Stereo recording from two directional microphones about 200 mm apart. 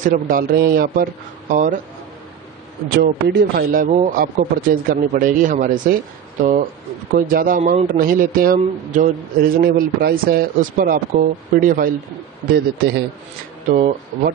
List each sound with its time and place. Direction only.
0.0 s a man's voice: 40° right (ahead or behind)
3.0 s a man's voice: 55° right (ahead or behind)
13.7 s speech: 40° right (ahead or behind)